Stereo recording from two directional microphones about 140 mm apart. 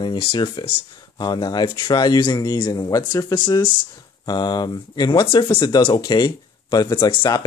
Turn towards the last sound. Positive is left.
turn(degrees=35)  # may be behind; listen again after turning